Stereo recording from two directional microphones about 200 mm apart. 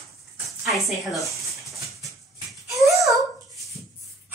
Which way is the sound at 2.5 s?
Centre (ahead or behind).